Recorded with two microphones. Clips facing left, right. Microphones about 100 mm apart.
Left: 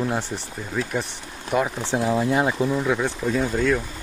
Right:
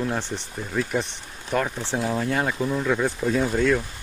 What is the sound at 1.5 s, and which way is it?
Speech, 15° left (ahead or behind).